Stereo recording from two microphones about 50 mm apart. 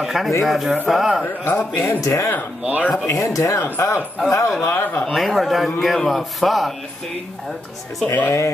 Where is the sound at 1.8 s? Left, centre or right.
Left.